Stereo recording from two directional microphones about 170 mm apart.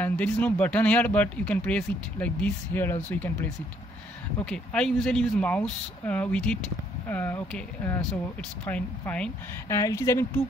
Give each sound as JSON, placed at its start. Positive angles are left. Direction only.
{"t": 0.0, "sound": "speech", "side_deg": 10}